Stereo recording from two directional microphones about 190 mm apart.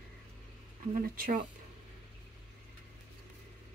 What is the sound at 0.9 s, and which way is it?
Speech, 50° right (ahead or behind).